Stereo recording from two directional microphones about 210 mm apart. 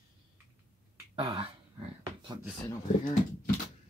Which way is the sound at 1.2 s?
25° right (ahead or behind).